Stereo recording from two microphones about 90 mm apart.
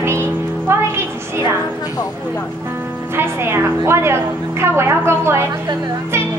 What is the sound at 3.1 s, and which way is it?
A woman's voice, 25° right (ahead or behind).